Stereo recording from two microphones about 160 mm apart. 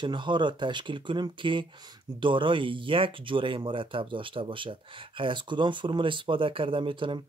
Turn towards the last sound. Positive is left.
turn(degrees=-30)  # may be behind; listen again after turning